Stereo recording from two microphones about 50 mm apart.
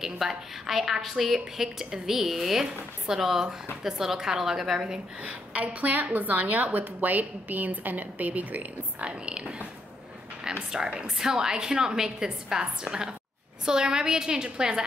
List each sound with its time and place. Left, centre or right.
0.0 s a woman's voice: centre
5.2 s a woman's voice: right
9.2 s a woman's voice: right